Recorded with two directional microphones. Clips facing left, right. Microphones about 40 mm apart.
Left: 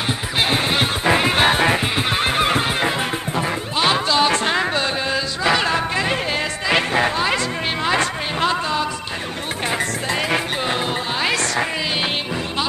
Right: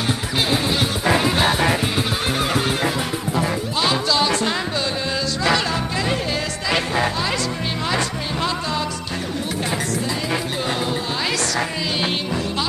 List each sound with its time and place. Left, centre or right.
0.4 s music: left
5.1 s chant: left
5.7 s music: left
11.2 s music: left